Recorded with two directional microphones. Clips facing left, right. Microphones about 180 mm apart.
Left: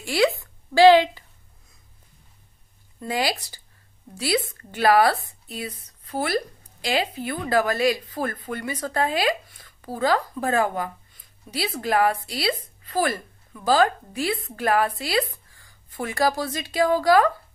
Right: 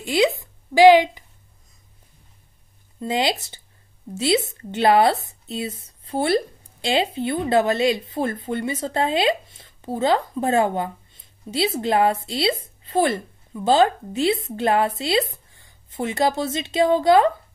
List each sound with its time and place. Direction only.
0.0 s a woman's voice: 20° right (ahead or behind)
3.0 s speech: 25° right (ahead or behind)